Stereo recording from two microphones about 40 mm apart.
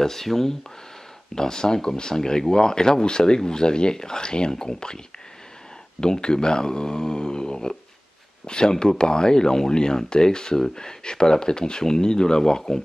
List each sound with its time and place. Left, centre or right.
0.0 s speech: centre